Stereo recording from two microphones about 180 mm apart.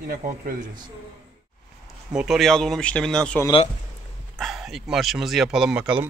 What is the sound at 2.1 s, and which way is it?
Speech, 5° right (ahead or behind).